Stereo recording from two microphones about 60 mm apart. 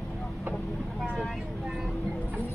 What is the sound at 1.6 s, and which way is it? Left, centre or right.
Vehicle, centre.